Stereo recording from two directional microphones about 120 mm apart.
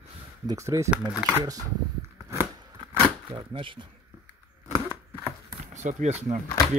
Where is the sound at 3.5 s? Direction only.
45° right (ahead or behind).